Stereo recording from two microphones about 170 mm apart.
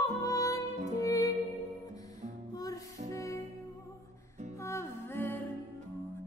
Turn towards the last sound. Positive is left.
turn(degrees=10)  # may be behind; listen again after turning